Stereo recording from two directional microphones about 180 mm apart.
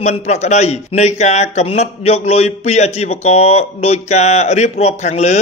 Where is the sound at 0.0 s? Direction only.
35° left (ahead or behind).